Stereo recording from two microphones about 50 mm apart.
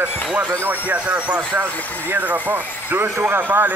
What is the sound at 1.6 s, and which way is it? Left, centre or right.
Speech, right.